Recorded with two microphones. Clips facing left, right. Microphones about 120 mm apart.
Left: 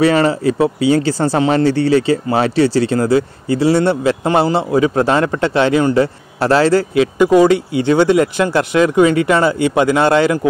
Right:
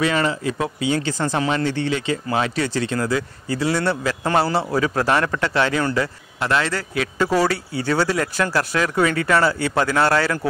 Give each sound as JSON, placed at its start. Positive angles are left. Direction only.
{"t": 0.0, "sound": "speech", "side_deg": 35}
{"t": 6.4, "sound": "a man's voice", "side_deg": 35}
{"t": 7.2, "sound": "speech", "side_deg": 15}